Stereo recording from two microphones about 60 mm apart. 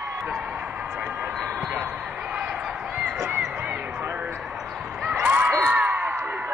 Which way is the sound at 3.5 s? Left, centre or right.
Right.